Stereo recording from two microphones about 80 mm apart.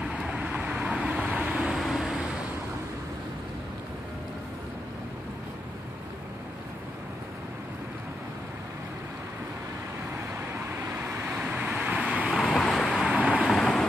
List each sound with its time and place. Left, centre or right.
0.0 s vehicle: centre
1.8 s vehicle: centre
10.5 s vehicle: right
11.3 s vehicle: centre
12.4 s vehicle: centre
13.0 s vehicle: centre